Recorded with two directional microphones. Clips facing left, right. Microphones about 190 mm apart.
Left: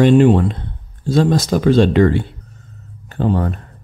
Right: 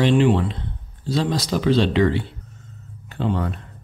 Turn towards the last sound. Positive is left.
turn(degrees=45)  # may be behind; listen again after turning